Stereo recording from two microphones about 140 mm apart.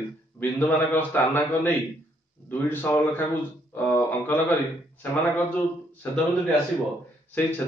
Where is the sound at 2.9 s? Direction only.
15° left (ahead or behind).